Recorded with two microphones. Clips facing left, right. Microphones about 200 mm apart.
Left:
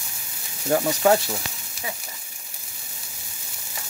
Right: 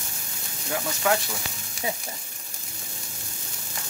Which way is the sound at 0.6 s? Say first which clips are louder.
Left 7 dB; 35° left (ahead or behind).